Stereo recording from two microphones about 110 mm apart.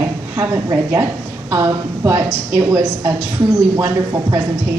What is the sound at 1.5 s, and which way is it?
A woman's voice, 30° right (ahead or behind).